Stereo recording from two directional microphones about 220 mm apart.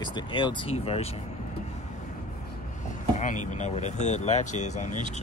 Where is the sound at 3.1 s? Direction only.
35° left (ahead or behind).